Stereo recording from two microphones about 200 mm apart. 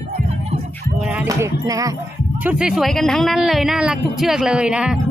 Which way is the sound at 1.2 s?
15° right (ahead or behind).